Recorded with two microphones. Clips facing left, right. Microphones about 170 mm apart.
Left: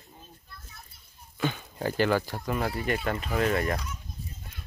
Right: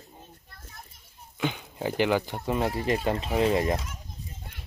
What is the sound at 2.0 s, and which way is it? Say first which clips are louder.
Speech: right 1 dB; 15° right (ahead or behind).